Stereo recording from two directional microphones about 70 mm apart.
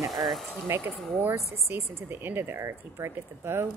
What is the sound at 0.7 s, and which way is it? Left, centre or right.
Speech, right.